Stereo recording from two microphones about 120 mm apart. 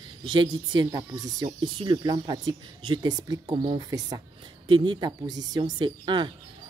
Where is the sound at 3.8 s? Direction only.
30° right (ahead or behind).